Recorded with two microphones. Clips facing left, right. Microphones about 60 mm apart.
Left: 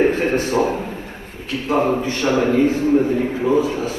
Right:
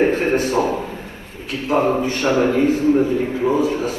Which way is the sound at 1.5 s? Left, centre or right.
Right.